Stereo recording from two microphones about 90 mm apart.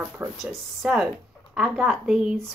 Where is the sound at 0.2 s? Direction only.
20° right (ahead or behind).